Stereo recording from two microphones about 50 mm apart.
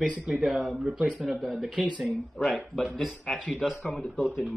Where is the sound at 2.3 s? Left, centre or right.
Centre.